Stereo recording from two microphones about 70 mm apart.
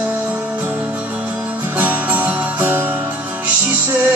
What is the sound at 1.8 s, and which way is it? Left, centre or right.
Music, right.